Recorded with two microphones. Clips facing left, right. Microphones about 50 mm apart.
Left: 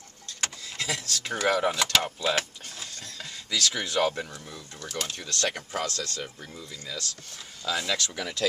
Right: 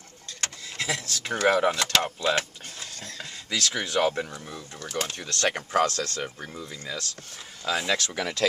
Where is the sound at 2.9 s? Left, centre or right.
Right.